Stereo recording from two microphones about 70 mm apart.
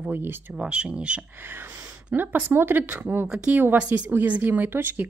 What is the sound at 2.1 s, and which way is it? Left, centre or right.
A woman's voice, right.